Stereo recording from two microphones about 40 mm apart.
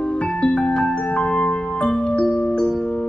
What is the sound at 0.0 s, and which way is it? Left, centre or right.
Music, left.